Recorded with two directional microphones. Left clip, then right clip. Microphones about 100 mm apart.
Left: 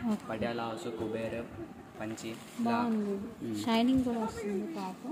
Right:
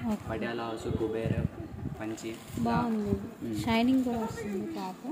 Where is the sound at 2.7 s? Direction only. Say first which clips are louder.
Right 1 dB; centre (ahead or behind).